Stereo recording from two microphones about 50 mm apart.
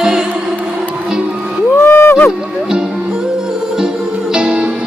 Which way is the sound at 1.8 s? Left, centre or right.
Left.